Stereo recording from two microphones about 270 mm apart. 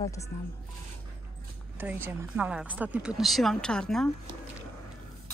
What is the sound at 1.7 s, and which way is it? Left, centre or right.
Speech, centre.